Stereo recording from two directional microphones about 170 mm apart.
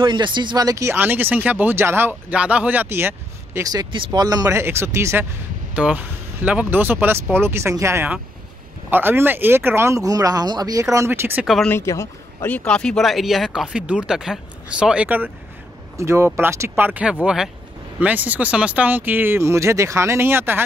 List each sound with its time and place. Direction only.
0.0 s speech: 25° right (ahead or behind)
3.9 s speech: 25° right (ahead or behind)
11.4 s speech: centre (ahead or behind)
11.7 s speech: 15° left (ahead or behind); by 20.6 s 15° right (ahead or behind)